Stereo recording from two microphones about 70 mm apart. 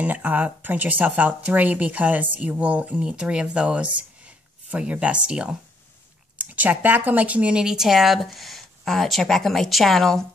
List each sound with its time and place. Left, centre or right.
0.0 s speech: right; by 10.2 s centre